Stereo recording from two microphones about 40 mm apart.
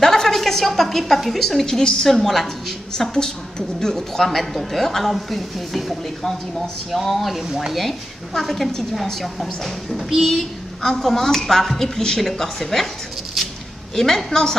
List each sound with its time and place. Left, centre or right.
0.0 s a woman's voice: centre
1.8 s a woman's voice: centre
2.0 s a woman's voice: centre
7.4 s speech: centre
8.3 s a woman's voice: centre
13.9 s a woman's voice: centre